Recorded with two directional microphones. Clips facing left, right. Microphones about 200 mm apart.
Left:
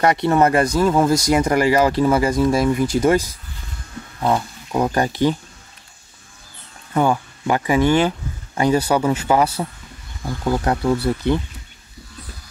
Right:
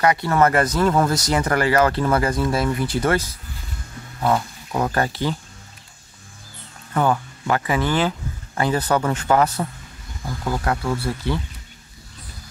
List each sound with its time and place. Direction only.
0.2 s speech: 20° left (ahead or behind)
6.9 s speech: 15° left (ahead or behind)